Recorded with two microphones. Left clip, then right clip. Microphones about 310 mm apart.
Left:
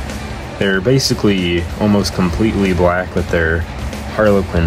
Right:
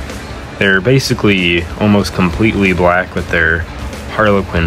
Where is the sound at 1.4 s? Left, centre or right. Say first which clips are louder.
Right 5 dB; left.